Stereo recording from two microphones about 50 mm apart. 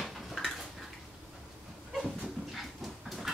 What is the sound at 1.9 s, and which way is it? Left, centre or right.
Dog, centre.